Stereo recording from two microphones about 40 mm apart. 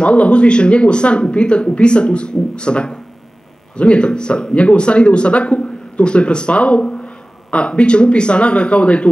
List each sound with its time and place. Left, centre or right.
0.0 s speech: left